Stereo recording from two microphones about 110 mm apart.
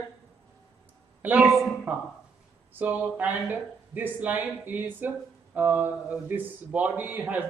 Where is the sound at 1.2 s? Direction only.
15° right (ahead or behind).